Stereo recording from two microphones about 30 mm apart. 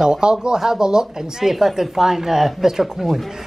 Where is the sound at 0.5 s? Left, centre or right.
Centre.